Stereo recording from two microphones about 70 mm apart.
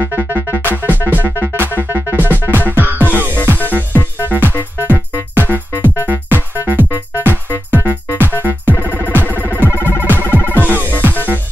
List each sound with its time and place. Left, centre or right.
0.0 s music: right